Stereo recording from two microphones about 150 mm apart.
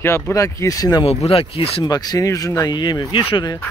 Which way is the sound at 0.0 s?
20° left (ahead or behind).